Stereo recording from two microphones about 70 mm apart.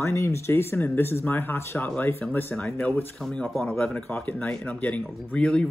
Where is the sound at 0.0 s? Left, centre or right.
Left.